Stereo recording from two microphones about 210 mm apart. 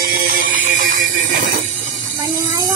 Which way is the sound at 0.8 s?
40° right (ahead or behind).